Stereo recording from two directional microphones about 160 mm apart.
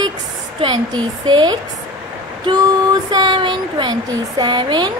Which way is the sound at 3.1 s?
25° right (ahead or behind).